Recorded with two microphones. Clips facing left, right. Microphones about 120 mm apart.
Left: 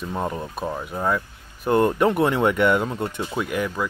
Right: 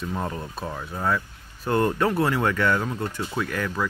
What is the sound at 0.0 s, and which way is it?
Speech, 20° left (ahead or behind).